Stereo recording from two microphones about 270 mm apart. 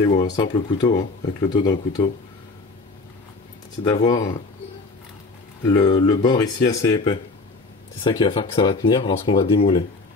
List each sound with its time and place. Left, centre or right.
0.0 s speech: centre
3.8 s speech: centre
5.7 s speech: centre